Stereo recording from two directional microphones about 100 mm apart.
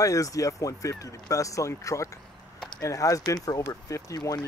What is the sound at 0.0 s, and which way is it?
Speech, 35° left (ahead or behind).